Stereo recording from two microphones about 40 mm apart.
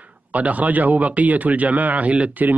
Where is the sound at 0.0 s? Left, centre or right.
Right.